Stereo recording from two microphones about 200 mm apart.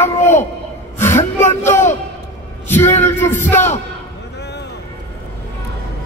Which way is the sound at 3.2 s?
10° left (ahead or behind).